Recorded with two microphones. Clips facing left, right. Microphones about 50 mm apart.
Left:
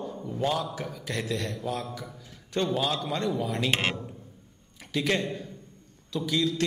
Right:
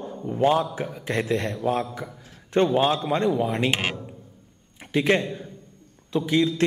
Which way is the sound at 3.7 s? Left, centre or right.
Centre.